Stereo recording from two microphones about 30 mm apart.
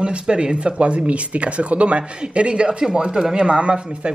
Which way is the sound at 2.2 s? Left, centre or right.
Right.